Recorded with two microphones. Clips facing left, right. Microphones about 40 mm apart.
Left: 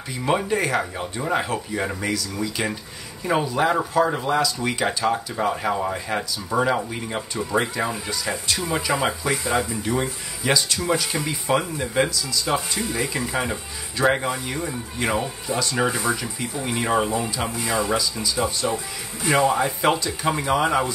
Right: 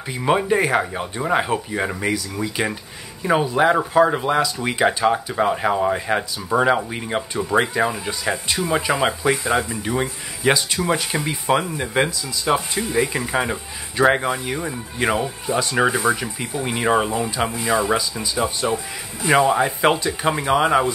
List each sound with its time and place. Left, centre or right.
0.2 s speech: centre
17.5 s speech: right